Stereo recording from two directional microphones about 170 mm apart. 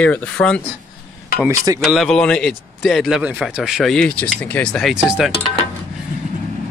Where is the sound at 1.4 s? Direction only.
20° right (ahead or behind).